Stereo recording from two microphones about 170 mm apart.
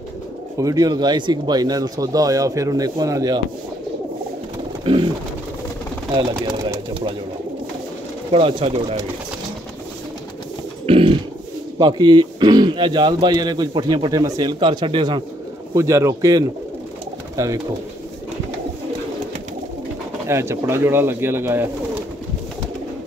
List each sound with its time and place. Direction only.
0.6 s a man's voice: 20° right (ahead or behind)
4.8 s bird: 30° right (ahead or behind)
6.4 s a man's voice: 25° right (ahead or behind)
8.3 s speech: 30° right (ahead or behind)
10.9 s bird: 30° right (ahead or behind)
11.8 s a man's voice: 25° right (ahead or behind)
20.2 s speech: 15° right (ahead or behind)